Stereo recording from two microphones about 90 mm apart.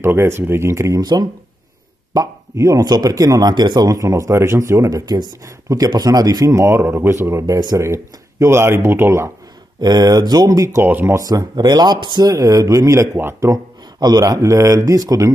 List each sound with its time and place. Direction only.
0.0 s speech: 30° right (ahead or behind)
1.0 s speech: 50° right (ahead or behind)
2.1 s speech: 35° right (ahead or behind)
9.8 s speech: 45° right (ahead or behind)
10.8 s speech: 20° right (ahead or behind)
11.1 s speech: 40° right (ahead or behind); by 12.3 s 55° right (ahead or behind)
12.3 s speech: 40° right (ahead or behind)
13.9 s speech: 50° right (ahead or behind)